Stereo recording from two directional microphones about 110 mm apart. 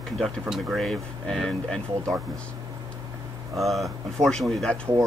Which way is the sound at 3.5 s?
Centre (ahead or behind).